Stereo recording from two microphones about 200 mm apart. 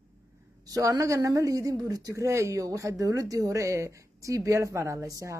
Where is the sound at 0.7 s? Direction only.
15° right (ahead or behind).